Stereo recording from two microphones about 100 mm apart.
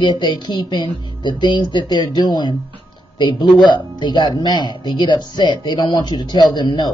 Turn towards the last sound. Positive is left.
turn(degrees=45)  # may be behind; listen again after turning